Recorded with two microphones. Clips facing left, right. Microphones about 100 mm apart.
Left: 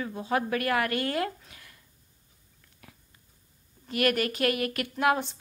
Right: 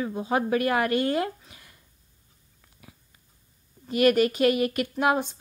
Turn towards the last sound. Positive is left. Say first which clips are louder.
# right 2 dB
turn(degrees=-20)  # may be behind; listen again after turning